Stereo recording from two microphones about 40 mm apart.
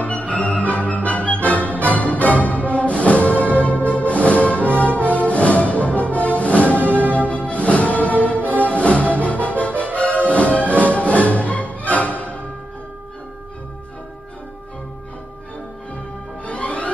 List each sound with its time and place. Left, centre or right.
0.0 s music: left
10.7 s music: right
11.0 s music: left
16.4 s music: left